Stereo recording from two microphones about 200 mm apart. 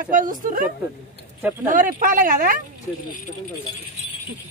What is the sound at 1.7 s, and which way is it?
Speech, 40° right (ahead or behind).